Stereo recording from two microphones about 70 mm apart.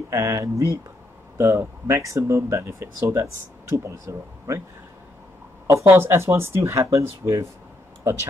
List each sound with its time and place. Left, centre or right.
0.1 s speech: right
5.7 s speech: right